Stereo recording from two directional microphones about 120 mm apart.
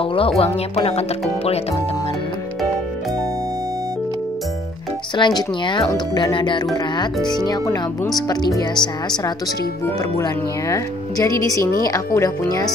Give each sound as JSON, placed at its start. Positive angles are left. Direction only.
{"t": 0.0, "sound": "music", "side_deg": 50}
{"t": 0.4, "sound": "a woman's voice", "side_deg": 55}
{"t": 5.1, "sound": "speech", "side_deg": 40}